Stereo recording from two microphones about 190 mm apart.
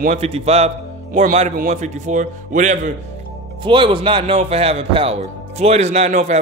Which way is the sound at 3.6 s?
25° right (ahead or behind).